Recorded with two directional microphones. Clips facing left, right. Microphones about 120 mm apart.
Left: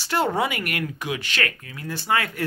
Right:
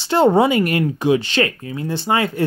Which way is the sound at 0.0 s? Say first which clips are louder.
Right 9 dB; 25° right (ahead or behind).